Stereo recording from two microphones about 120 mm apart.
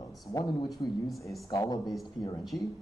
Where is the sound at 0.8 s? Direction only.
35° left (ahead or behind).